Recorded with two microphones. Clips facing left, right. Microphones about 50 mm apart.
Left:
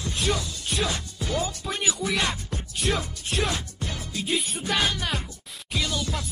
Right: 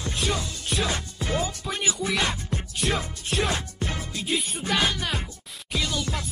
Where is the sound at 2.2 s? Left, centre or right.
Right.